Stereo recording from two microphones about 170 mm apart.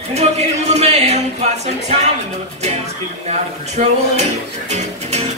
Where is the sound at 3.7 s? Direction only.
40° right (ahead or behind).